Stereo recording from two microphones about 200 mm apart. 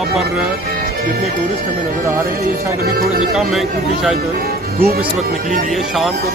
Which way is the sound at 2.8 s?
50° right (ahead or behind).